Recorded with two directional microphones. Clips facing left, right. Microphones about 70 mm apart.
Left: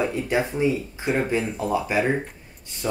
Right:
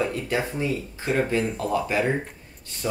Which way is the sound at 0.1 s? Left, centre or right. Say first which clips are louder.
Left 3 dB; centre.